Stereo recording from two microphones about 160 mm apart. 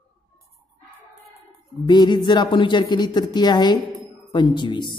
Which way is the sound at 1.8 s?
25° left (ahead or behind).